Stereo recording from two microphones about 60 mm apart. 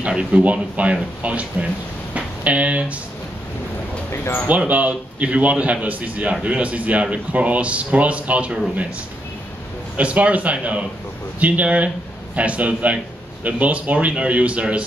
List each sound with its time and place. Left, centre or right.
0.0 s a man's voice: centre
2.1 s a sound: right
4.1 s speech: left
4.5 s a man's voice: right
9.9 s a man's voice: right